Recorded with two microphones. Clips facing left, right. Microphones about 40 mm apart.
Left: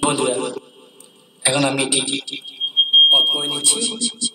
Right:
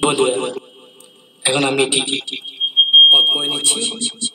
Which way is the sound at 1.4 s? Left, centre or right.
Right.